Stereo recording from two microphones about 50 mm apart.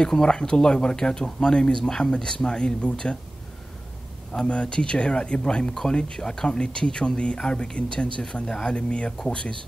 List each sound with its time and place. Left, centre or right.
0.0 s speech: centre
4.3 s speech: centre